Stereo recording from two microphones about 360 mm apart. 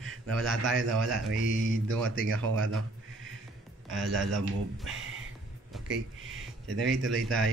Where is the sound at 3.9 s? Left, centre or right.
Centre.